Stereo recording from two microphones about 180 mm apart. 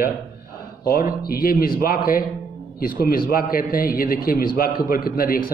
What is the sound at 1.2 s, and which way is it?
A man's voice, 55° left (ahead or behind).